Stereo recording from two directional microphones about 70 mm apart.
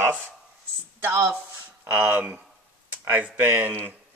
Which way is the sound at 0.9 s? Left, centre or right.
Right.